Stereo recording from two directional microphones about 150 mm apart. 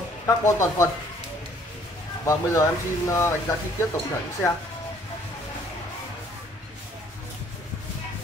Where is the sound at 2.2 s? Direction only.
20° left (ahead or behind).